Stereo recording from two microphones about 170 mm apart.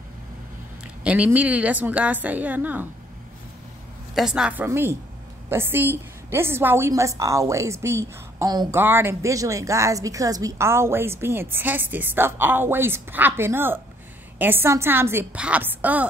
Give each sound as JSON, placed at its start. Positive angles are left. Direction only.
{"t": 1.0, "sound": "a woman's voice", "side_deg": -10}
{"t": 4.1, "sound": "a woman's voice", "side_deg": -5}